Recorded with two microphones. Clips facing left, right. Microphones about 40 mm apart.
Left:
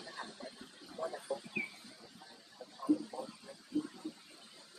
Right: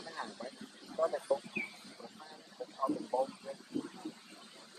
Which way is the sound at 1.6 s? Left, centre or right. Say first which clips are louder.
Even; right.